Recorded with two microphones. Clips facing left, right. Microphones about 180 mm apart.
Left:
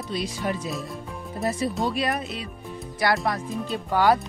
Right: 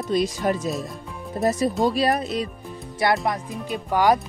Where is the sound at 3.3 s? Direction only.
15° right (ahead or behind).